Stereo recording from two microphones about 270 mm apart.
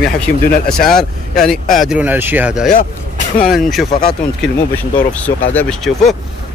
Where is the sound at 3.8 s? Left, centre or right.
Left.